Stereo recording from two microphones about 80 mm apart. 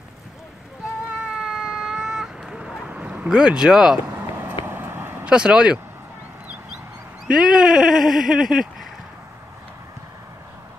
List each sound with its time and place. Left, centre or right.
1.2 s a sound: centre
2.9 s speech: centre
4.2 s vehicle: right
5.2 s speech: centre
7.2 s speech: centre